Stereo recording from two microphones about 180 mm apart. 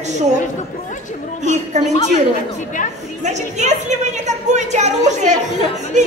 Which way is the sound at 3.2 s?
40° right (ahead or behind).